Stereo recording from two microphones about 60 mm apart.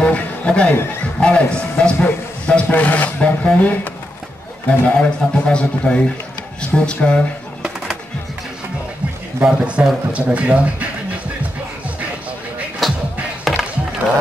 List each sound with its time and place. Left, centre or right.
0.0 s a sound: centre
1.2 s a man's voice: centre
2.0 s a sound: centre
2.7 s a man's voice: left
9.4 s a man's voice: centre
12.8 s music: centre